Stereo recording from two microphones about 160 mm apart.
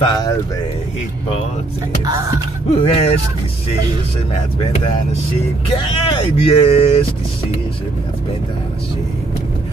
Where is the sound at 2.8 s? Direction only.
40° left (ahead or behind).